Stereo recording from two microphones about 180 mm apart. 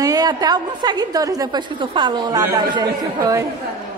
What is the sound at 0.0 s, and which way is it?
A woman's voice, 20° right (ahead or behind).